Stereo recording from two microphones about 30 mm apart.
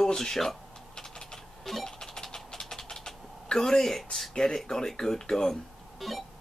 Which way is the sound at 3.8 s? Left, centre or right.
Centre.